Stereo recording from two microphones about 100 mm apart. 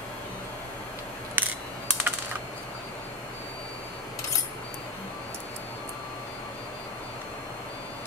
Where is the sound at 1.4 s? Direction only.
20° right (ahead or behind).